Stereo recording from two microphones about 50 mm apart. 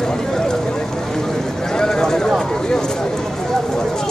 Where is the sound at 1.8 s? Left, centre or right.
Centre.